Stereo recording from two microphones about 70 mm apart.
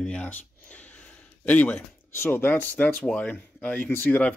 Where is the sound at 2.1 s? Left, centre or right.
Left.